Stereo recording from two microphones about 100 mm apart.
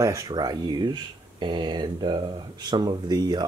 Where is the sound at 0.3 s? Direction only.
45° right (ahead or behind).